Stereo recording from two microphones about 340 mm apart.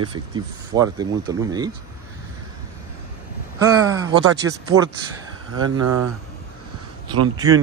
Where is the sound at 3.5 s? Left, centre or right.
Centre.